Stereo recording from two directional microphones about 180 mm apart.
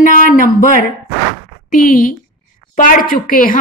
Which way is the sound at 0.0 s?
50° left (ahead or behind).